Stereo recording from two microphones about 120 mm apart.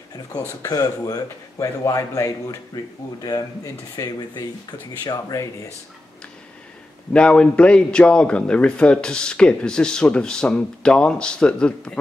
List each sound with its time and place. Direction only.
0.4 s speech: 30° left (ahead or behind)
7.1 s speech: 10° left (ahead or behind)